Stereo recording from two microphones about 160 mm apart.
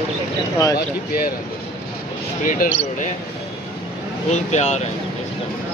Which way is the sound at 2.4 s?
55° left (ahead or behind).